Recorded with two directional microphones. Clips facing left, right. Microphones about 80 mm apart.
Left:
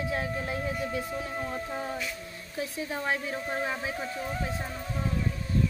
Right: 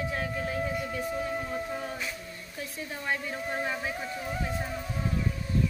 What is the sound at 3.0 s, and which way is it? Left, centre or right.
Speech, centre.